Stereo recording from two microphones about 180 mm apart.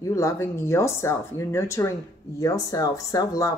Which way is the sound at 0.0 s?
15° left (ahead or behind).